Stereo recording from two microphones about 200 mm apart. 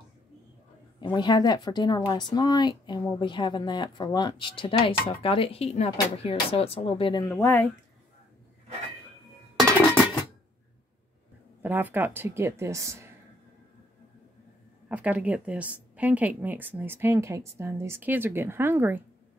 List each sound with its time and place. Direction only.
1.0 s a woman's voice: 20° left (ahead or behind)
7.3 s speech: 10° left (ahead or behind)
11.6 s a woman's voice: 10° right (ahead or behind)
14.9 s a woman's voice: 5° right (ahead or behind)